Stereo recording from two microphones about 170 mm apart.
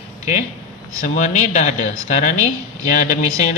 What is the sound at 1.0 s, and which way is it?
A man's voice, 45° left (ahead or behind).